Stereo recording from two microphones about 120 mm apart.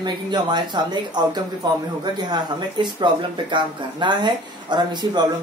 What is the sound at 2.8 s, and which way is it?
Speech, 40° right (ahead or behind).